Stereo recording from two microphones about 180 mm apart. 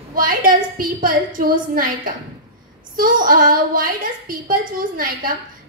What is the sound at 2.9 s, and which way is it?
A woman's voice, 50° right (ahead or behind).